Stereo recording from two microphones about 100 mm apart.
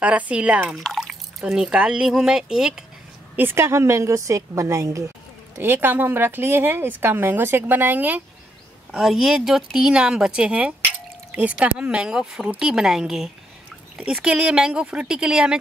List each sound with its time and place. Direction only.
0.0 s speech: 15° right (ahead or behind)
3.3 s speech: 20° right (ahead or behind)
8.9 s speech: 5° right (ahead or behind)